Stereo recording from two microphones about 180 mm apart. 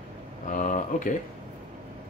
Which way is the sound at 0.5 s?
45° left (ahead or behind).